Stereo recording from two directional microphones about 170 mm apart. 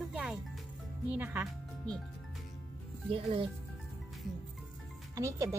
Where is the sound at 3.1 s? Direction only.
30° right (ahead or behind).